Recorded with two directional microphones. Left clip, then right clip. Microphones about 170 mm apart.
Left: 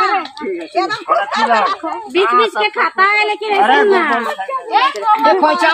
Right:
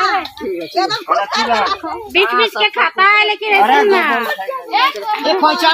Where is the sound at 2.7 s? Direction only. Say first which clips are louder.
Right 1 dB; 75° left (ahead or behind).